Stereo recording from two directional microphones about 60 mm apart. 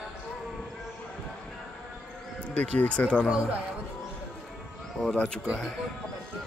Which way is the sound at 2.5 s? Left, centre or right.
Left.